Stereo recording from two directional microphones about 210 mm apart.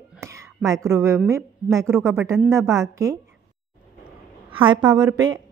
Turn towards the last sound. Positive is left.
turn(degrees=-15)  # may be behind; listen again after turning